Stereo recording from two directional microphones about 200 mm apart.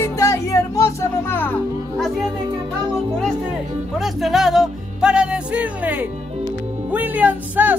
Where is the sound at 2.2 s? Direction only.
25° right (ahead or behind).